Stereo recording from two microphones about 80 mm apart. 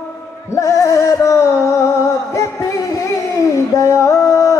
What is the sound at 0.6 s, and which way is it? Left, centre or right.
Music, left.